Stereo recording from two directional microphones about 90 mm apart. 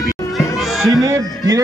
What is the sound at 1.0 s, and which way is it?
Speech, 40° right (ahead or behind).